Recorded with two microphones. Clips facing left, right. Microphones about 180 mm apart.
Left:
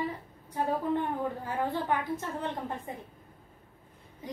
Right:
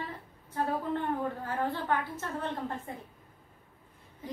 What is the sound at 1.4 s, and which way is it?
A woman's voice, 15° left (ahead or behind).